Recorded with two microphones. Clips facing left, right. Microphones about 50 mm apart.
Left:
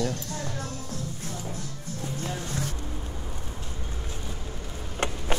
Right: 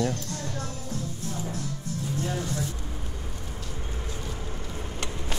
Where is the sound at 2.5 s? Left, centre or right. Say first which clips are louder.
Right 1 dB; left.